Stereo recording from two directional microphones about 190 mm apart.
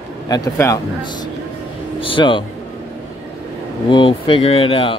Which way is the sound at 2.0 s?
25° left (ahead or behind).